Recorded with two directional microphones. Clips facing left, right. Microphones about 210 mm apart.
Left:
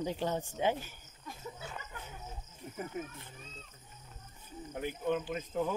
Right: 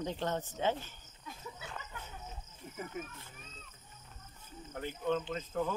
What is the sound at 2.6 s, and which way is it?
Speech, 45° left (ahead or behind).